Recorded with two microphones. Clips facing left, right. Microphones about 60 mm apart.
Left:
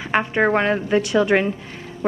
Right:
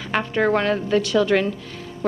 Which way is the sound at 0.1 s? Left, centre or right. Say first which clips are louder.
Left 2 dB; left.